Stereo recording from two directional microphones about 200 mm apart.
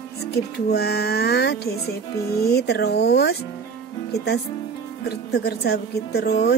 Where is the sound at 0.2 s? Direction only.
55° left (ahead or behind).